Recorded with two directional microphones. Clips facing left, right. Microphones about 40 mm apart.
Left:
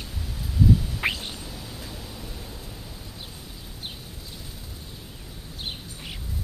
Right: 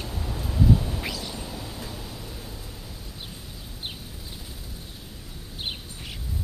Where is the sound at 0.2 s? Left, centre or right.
Right.